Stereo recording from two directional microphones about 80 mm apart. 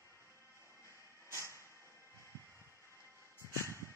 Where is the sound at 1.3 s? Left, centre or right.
Right.